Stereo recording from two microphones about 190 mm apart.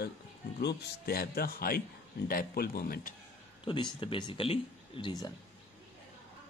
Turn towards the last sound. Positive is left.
turn(degrees=25)  # may be behind; listen again after turning